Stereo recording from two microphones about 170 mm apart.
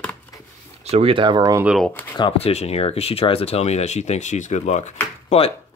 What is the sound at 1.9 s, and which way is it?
Speech, 15° left (ahead or behind).